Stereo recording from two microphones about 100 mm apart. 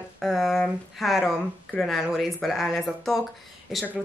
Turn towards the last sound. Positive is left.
turn(degrees=-5)  # may be behind; listen again after turning